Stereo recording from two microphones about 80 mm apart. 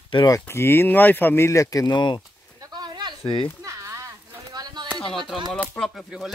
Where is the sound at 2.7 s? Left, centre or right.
Right.